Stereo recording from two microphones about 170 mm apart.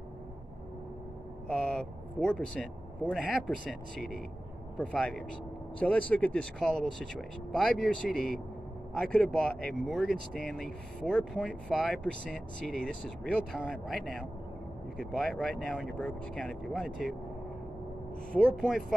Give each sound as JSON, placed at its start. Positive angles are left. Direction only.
{"t": 1.5, "sound": "speech", "side_deg": 5}
{"t": 4.7, "sound": "speech", "side_deg": 5}
{"t": 18.3, "sound": "speech", "side_deg": 5}